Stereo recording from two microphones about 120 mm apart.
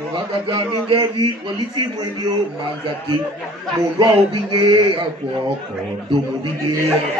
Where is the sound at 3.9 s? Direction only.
45° right (ahead or behind).